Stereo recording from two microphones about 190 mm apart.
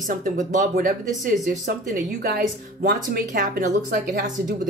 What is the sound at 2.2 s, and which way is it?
Speech, 55° right (ahead or behind).